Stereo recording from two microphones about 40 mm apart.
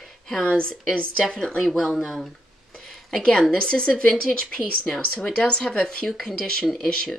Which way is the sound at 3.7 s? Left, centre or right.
Left.